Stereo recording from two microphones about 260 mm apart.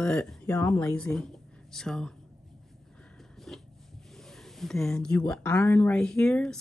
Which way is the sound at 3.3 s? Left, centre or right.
Centre.